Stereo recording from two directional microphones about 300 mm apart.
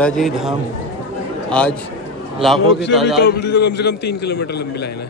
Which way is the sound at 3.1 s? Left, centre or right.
Left.